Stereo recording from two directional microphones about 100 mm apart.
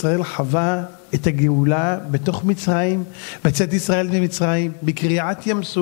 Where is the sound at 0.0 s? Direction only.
20° left (ahead or behind).